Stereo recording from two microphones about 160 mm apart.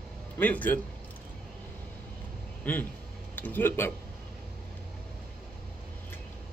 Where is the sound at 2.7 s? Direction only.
10° left (ahead or behind).